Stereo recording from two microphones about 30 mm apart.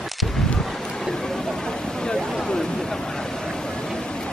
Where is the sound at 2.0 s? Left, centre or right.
Left.